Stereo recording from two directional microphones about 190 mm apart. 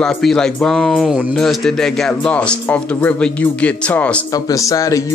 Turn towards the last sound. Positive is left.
turn(degrees=15)  # may be behind; listen again after turning